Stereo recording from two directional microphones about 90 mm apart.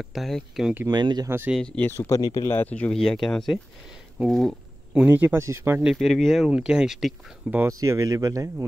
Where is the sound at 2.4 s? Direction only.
25° left (ahead or behind).